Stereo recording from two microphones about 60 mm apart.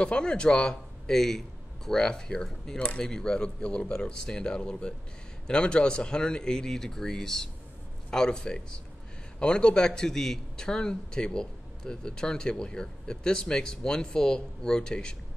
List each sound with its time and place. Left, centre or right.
0.0 s a man's voice: centre